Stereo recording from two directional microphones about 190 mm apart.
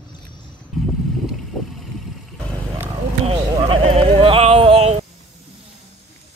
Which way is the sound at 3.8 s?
30° right (ahead or behind).